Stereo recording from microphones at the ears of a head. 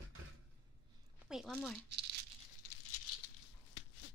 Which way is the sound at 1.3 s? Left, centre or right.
Centre.